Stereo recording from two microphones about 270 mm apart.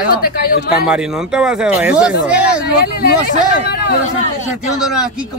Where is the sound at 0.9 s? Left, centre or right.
Centre.